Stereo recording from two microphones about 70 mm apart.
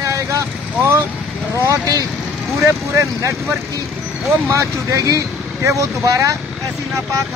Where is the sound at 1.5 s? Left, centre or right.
Right.